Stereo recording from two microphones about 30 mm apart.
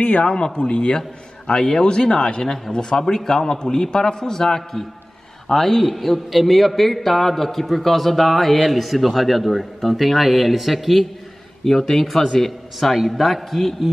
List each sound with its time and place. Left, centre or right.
0.0 s speech: left
0.3 s a man's voice: left; by 11.1 s centre
11.6 s a man's voice: centre